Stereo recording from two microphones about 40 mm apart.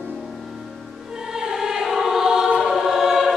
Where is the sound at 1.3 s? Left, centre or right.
Centre.